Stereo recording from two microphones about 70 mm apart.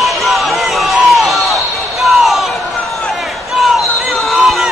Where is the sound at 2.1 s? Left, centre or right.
Centre.